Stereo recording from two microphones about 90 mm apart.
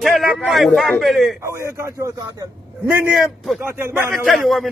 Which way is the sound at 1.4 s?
30° right (ahead or behind).